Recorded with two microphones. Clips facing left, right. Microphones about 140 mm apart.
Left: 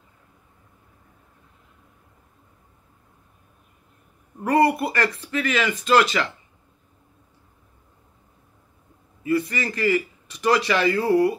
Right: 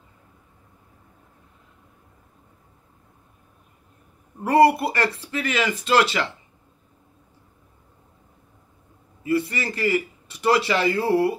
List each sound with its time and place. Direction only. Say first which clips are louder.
4.4 s speech: right 3 dB; 30° right (ahead or behind)
9.2 s speech: even; 30° right (ahead or behind)